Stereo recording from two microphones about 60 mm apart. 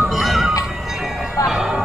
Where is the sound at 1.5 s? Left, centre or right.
Centre.